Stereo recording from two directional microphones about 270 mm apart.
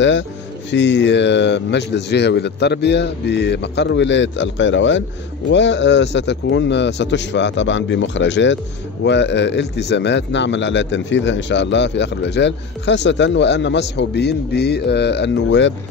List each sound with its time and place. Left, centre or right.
0.7 s a man's voice: left